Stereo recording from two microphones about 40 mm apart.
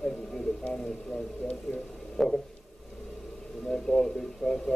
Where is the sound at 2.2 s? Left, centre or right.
Centre.